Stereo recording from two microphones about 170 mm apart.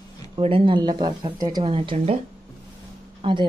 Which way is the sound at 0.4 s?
30° right (ahead or behind).